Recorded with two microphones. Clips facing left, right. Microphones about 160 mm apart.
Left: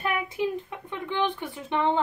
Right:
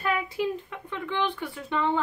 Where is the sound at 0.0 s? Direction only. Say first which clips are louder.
Even; 20° left (ahead or behind).